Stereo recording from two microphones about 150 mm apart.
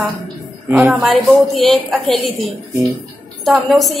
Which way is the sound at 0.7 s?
15° right (ahead or behind).